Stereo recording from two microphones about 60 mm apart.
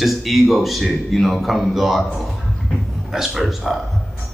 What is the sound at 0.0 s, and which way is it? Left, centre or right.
A man's voice, centre.